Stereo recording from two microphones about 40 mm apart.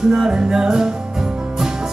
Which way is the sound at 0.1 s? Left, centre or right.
Right.